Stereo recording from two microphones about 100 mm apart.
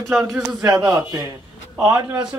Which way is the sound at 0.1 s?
5° right (ahead or behind).